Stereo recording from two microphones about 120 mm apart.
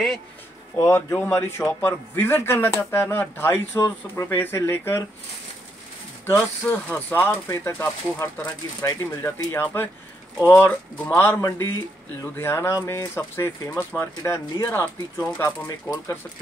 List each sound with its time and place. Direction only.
0.7 s speech: 20° left (ahead or behind)
6.3 s speech: 15° left (ahead or behind)